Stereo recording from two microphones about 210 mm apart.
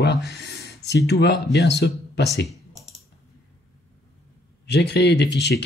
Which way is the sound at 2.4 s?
Centre (ahead or behind).